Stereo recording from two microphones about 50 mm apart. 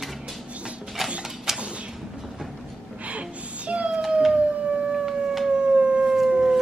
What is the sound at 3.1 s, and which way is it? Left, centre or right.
Music, right.